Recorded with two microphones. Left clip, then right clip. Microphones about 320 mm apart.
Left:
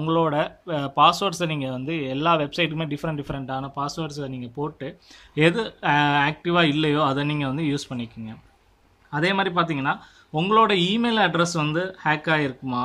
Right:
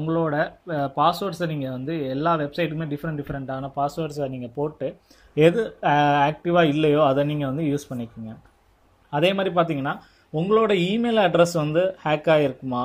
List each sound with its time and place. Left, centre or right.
0.0 s speech: centre
9.1 s speech: centre